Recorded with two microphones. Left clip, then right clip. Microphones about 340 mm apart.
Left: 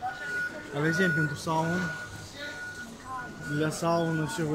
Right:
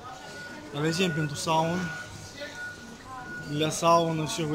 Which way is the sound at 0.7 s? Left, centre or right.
Centre.